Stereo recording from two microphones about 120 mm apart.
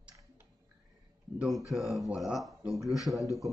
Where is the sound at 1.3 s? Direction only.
Centre (ahead or behind).